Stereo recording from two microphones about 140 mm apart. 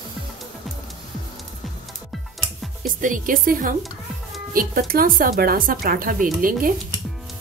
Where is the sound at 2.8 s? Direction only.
75° right (ahead or behind).